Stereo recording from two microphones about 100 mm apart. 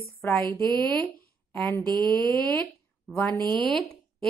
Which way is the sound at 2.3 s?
10° left (ahead or behind).